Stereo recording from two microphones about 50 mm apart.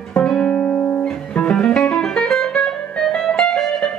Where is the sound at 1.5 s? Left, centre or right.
Centre.